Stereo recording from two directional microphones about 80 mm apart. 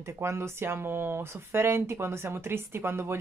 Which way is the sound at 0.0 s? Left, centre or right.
Right.